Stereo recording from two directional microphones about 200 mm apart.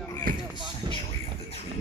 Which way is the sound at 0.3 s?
45° right (ahead or behind).